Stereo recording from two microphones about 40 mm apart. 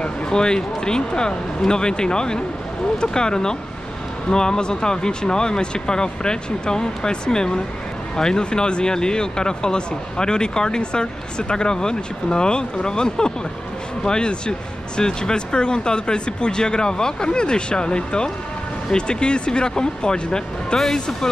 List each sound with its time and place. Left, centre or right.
0.3 s speech: centre